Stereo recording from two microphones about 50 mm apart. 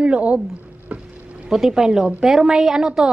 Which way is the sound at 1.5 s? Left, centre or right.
Centre.